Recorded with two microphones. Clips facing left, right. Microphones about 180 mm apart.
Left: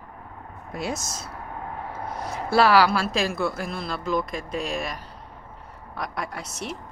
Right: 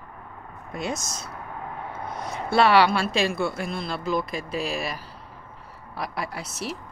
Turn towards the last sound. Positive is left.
turn(degrees=-5)  # may be behind; listen again after turning